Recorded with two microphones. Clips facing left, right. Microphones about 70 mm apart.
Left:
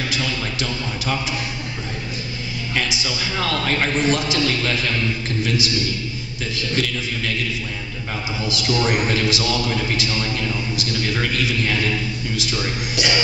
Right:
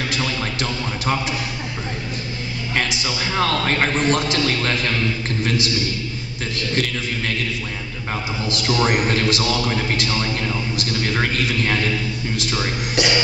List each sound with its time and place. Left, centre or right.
0.1 s a sound: right
2.7 s a man's voice: right
6.5 s a man's voice: right
8.6 s a man's voice: right